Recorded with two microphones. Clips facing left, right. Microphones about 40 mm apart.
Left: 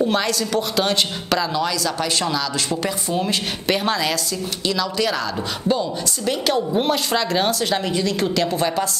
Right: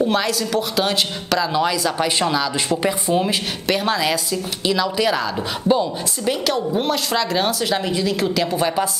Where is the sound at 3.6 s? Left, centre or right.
Centre.